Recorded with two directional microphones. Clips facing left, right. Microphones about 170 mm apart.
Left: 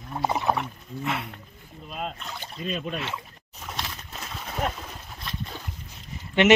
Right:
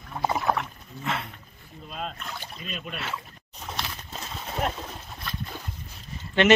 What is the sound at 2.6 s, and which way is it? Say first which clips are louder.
Speech: left 9 dB; 40° left (ahead or behind).